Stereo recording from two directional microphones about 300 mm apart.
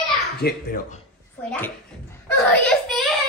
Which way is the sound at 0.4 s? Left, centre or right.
Left.